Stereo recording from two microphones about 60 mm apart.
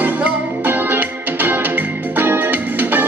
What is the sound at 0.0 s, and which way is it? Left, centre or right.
Music, right.